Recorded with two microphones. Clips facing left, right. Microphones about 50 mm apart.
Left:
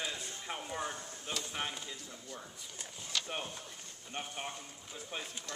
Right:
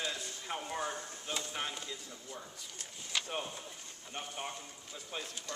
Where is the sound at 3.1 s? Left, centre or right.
Centre.